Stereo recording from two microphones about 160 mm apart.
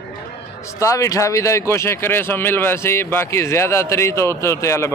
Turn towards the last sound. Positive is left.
turn(degrees=15)  # may be behind; listen again after turning